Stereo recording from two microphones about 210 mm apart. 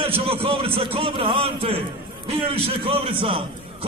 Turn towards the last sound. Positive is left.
turn(degrees=-25)  # may be behind; listen again after turning